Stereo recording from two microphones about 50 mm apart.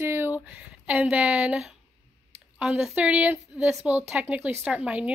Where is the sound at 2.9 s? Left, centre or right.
Right.